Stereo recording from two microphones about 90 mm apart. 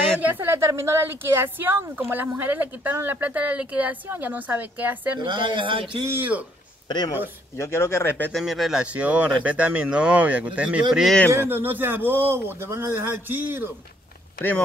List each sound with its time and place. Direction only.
0.3 s a woman's voice: 25° right (ahead or behind)
5.2 s a man's voice: 60° right (ahead or behind)
6.0 s a woman's voice: 20° right (ahead or behind)
7.5 s speech: 30° left (ahead or behind)
8.3 s speech: centre (ahead or behind)
11.3 s a woman's voice: 25° right (ahead or behind)